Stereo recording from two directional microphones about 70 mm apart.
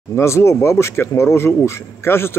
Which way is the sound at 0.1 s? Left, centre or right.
Left.